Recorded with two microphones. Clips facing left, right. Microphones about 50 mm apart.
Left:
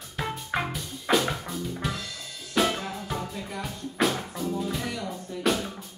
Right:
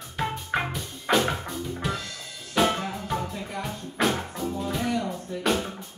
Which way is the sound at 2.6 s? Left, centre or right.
Centre.